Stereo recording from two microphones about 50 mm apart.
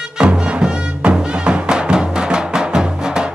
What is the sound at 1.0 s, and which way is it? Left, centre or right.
Music, right.